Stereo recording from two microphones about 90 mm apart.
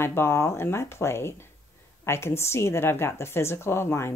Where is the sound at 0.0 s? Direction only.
30° left (ahead or behind).